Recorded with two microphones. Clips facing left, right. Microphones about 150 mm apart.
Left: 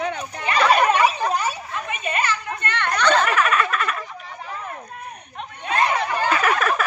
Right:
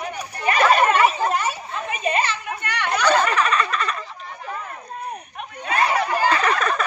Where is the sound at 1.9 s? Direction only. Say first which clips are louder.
Right 3 dB; 35° right (ahead or behind).